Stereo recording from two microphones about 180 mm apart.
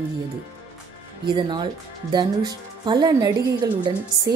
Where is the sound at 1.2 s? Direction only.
25° right (ahead or behind).